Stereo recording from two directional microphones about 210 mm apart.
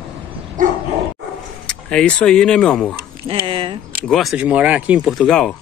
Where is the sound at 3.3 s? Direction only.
25° right (ahead or behind).